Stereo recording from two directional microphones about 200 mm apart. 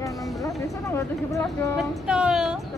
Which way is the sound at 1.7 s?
5° right (ahead or behind).